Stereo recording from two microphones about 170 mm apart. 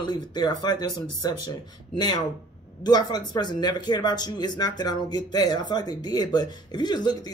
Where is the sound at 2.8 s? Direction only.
25° left (ahead or behind).